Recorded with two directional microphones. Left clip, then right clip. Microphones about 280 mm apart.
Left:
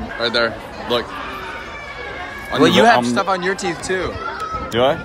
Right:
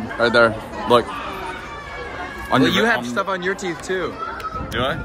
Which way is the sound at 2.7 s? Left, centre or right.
Centre.